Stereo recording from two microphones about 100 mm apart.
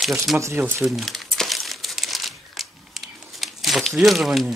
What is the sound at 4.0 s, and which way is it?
Speech, centre (ahead or behind).